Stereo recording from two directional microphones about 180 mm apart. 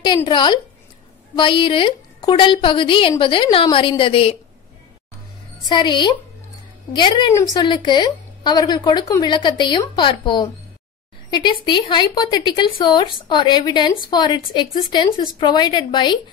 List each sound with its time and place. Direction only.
0.0 s speech: 25° left (ahead or behind)
5.7 s speech: 25° left (ahead or behind)